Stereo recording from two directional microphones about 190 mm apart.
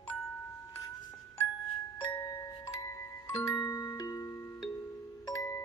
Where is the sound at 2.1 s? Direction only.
20° left (ahead or behind).